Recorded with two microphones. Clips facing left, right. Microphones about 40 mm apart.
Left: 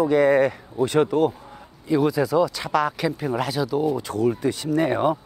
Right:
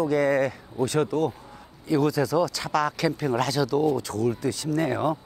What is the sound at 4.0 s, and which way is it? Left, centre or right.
Speech, left.